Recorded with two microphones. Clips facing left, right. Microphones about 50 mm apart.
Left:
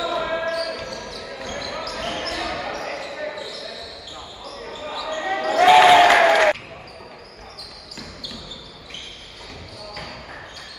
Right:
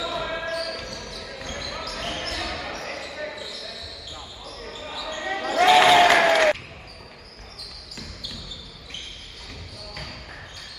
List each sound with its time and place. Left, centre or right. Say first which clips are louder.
0.0 s basketball bounce: left 5 dB; centre